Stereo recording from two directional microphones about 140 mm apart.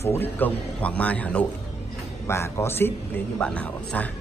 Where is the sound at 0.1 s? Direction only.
15° left (ahead or behind).